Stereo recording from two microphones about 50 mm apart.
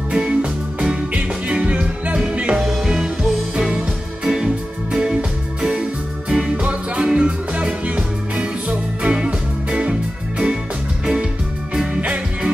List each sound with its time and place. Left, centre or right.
0.1 s music: centre
2.6 s music: centre
5.6 s music: centre
6.5 s music: right
11.7 s music: centre